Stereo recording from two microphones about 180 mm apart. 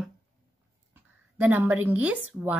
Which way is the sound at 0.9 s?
10° right (ahead or behind).